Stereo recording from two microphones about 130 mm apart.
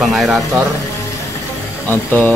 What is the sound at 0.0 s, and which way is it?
Speech, centre (ahead or behind).